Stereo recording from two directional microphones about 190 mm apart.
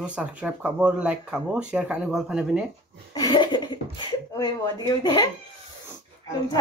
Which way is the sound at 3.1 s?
20° left (ahead or behind).